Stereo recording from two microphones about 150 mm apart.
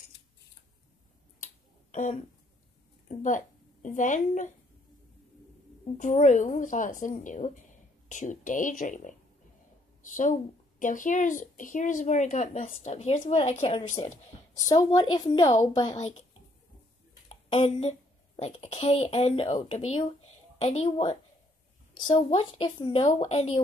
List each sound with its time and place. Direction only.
1.9 s a woman's voice: 55° left (ahead or behind)
5.9 s speech: 55° left (ahead or behind)
14.5 s a woman's voice: 25° left (ahead or behind)
17.3 s a woman's voice: 45° left (ahead or behind)
22.3 s speech: 40° left (ahead or behind)